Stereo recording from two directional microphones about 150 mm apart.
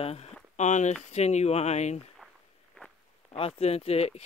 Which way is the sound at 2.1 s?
Centre (ahead or behind).